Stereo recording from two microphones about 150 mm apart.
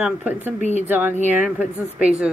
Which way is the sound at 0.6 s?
55° right (ahead or behind).